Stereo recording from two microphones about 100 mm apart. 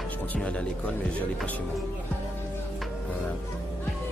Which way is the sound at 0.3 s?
10° left (ahead or behind).